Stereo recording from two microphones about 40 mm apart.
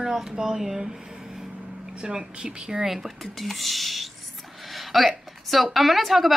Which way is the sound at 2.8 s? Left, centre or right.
Centre.